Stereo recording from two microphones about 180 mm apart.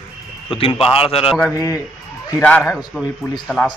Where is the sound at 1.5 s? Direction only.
15° left (ahead or behind).